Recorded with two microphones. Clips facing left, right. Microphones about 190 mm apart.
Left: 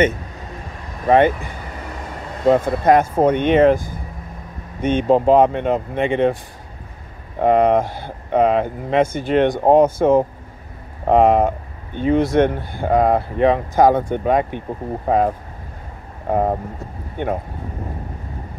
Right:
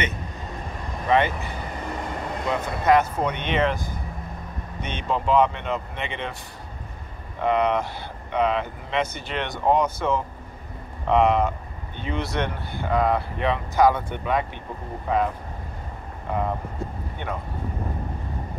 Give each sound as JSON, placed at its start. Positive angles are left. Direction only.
{"t": 1.0, "sound": "speech", "side_deg": 50}
{"t": 7.3, "sound": "speech", "side_deg": 50}